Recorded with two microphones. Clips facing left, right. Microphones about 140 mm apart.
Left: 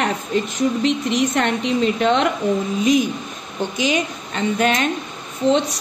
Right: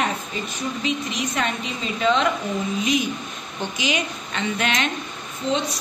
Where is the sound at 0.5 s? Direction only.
75° left (ahead or behind).